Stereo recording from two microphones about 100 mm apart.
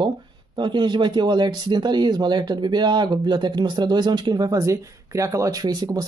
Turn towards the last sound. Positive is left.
turn(degrees=-40)  # may be behind; listen again after turning